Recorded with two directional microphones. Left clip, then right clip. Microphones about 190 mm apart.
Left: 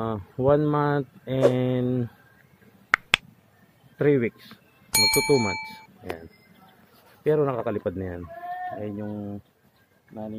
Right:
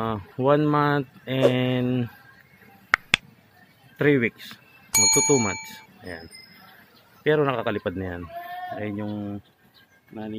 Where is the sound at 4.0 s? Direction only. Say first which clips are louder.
Right 1 dB; centre (ahead or behind).